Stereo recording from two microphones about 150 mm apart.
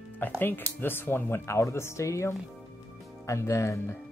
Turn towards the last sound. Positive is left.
turn(degrees=20)  # may be behind; listen again after turning